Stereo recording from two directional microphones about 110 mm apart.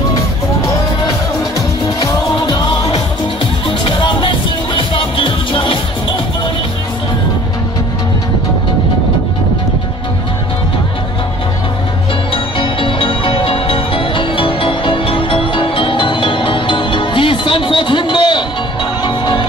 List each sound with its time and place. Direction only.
2.0 s music: 35° left (ahead or behind)
3.6 s music: 50° left (ahead or behind)
12.5 s music: 55° left (ahead or behind)